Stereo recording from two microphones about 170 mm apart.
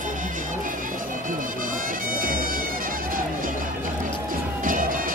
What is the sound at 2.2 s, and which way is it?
Music, 55° right (ahead or behind).